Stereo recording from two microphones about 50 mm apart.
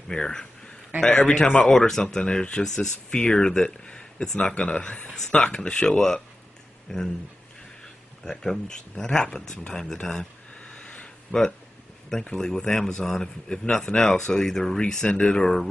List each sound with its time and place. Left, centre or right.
0.1 s a man's voice: centre
1.7 s a man's voice: centre
8.2 s a man's voice: centre
10.6 s a sound: left
12.3 s a man's voice: centre